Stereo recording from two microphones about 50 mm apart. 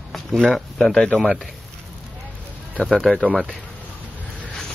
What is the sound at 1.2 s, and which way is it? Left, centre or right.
Speech, centre.